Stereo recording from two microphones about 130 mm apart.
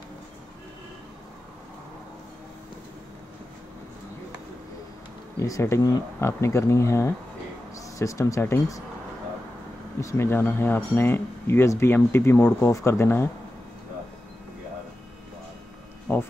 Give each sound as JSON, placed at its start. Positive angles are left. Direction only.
{"t": 5.4, "sound": "speech", "side_deg": 20}
{"t": 9.9, "sound": "speech", "side_deg": 20}
{"t": 16.1, "sound": "a sound", "side_deg": 15}